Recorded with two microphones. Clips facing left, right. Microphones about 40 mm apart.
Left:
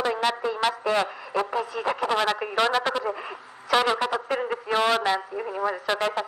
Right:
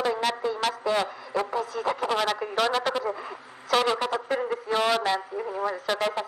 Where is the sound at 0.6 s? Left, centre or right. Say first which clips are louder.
Left 4 dB; centre.